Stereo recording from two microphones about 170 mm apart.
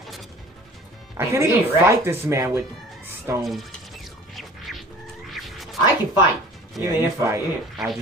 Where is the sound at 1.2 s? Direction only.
15° right (ahead or behind).